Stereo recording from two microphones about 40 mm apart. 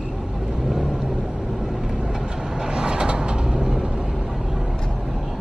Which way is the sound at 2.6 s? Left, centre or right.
Right.